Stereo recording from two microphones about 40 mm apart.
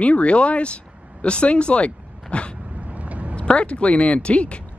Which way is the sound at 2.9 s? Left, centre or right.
Right.